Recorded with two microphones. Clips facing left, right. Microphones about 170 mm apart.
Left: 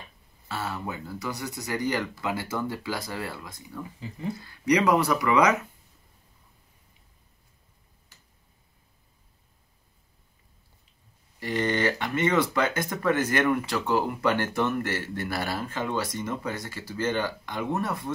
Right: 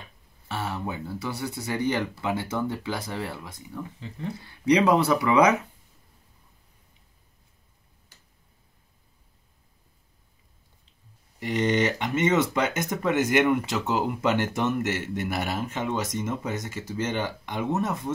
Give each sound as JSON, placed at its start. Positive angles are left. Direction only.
{"t": 0.6, "sound": "speech", "side_deg": -25}
{"t": 4.0, "sound": "speech", "side_deg": 10}
{"t": 4.5, "sound": "speech", "side_deg": -25}
{"t": 11.3, "sound": "speech", "side_deg": -20}